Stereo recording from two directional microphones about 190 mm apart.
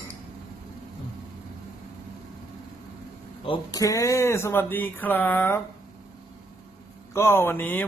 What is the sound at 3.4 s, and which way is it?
Speech, 20° left (ahead or behind).